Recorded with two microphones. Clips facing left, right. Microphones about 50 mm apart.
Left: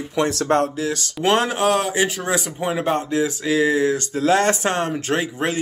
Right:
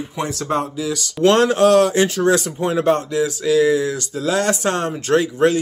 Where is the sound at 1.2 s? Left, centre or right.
Centre.